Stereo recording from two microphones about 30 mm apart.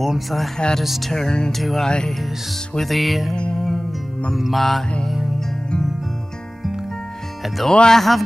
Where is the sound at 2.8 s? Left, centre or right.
Centre.